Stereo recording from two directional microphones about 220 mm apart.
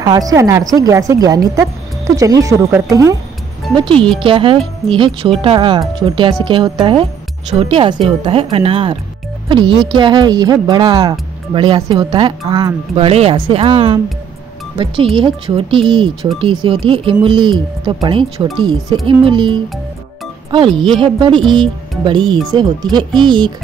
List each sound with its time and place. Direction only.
0.0 s a woman's voice: 15° right (ahead or behind)
9.9 s speech: 20° right (ahead or behind)
20.7 s speech: centre (ahead or behind)
21.0 s speech: 20° right (ahead or behind)